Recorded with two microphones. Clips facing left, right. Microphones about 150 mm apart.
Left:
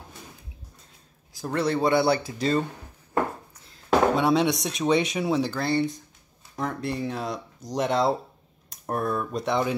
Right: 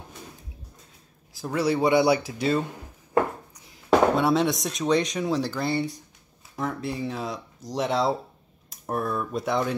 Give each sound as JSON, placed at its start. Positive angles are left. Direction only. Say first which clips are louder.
{"t": 1.3, "sound": "speech", "louder": "right 1 dB", "side_deg": -5}
{"t": 3.5, "sound": "a sound", "louder": "right 2 dB", "side_deg": -15}
{"t": 4.2, "sound": "speech", "louder": "even", "side_deg": 0}